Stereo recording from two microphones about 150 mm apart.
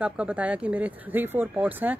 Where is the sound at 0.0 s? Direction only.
10° right (ahead or behind).